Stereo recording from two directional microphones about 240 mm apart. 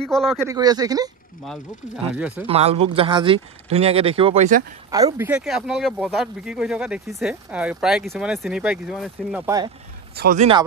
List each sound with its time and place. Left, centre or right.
0.0 s speech: centre
0.4 s speech: centre
2.1 s speech: centre
2.4 s speech: right
4.9 s speech: centre
10.1 s a man's voice: right